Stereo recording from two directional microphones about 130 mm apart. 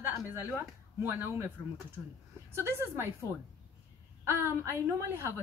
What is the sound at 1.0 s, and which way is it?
Speech, 15° right (ahead or behind).